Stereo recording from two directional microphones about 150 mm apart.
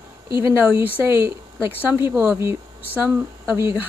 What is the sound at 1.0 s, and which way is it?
Speech, 15° right (ahead or behind).